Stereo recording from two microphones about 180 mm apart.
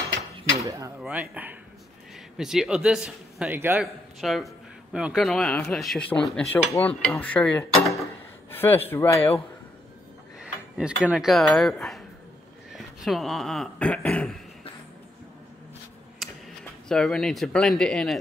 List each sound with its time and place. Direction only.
0.7 s speech: 20° right (ahead or behind)
1.0 s speech: 5° right (ahead or behind)
3.8 s speech: centre (ahead or behind)
10.4 s speech: 5° right (ahead or behind)
16.2 s a sound: centre (ahead or behind)
16.9 s speech: 5° left (ahead or behind)